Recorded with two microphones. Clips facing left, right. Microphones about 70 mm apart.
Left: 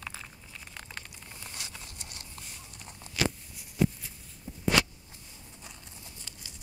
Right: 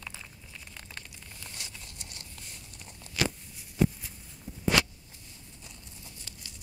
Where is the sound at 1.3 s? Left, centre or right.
Left.